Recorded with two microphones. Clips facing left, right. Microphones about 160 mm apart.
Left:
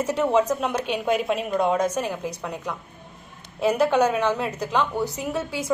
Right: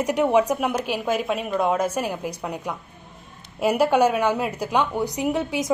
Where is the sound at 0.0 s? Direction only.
15° right (ahead or behind).